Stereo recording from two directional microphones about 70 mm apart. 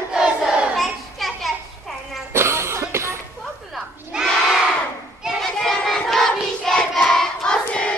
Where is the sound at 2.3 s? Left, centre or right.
Right.